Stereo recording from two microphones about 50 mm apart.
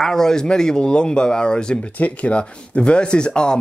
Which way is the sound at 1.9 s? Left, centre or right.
Left.